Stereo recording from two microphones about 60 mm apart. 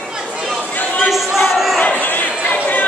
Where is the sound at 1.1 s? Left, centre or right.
Centre.